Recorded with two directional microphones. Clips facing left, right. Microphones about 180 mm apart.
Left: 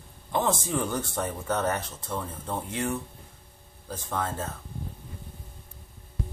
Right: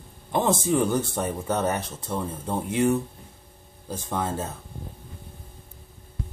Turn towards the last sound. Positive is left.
turn(degrees=-15)  # may be behind; listen again after turning